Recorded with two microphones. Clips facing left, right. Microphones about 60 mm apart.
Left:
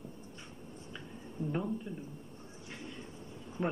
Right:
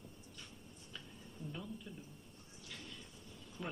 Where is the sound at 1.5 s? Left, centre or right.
Left.